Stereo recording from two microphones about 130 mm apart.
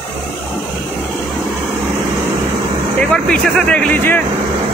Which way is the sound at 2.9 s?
10° left (ahead or behind).